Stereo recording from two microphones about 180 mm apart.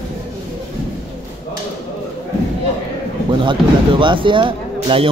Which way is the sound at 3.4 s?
30° right (ahead or behind).